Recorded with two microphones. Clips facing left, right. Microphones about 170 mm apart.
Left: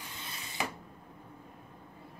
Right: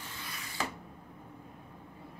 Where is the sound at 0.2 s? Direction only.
25° left (ahead or behind).